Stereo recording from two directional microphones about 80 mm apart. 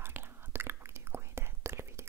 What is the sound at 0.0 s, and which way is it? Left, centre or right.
Whispering, right.